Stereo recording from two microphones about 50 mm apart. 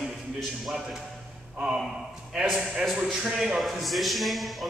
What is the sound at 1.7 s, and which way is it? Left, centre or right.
A man's voice, centre.